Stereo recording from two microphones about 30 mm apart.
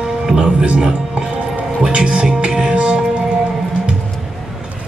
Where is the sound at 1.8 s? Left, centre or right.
Right.